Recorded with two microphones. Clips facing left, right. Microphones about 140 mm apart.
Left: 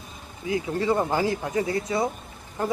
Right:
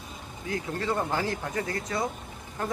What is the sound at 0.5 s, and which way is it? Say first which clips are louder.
A man's voice: left 6 dB; 10° left (ahead or behind).